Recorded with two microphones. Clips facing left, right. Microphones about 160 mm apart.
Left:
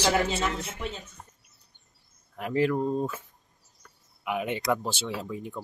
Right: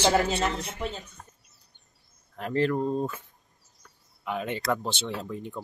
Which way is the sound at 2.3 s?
10° left (ahead or behind).